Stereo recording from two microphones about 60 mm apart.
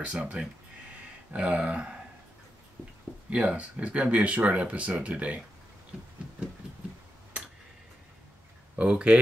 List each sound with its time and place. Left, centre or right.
0.0 s speech: right
3.3 s speech: right
8.7 s speech: right